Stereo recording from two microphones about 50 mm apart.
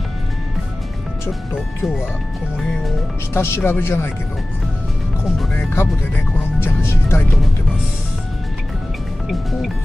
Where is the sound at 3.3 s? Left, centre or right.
Left.